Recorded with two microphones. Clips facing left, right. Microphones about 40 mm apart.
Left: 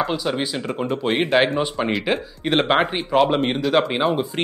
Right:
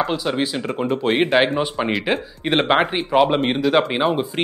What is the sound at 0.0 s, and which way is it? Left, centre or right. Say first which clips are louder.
Speech: right 1 dB; centre.